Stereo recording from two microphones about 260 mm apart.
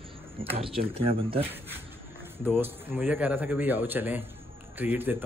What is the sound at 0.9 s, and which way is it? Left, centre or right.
Speech, right.